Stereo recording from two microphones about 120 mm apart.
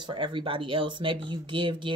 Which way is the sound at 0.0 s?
40° right (ahead or behind).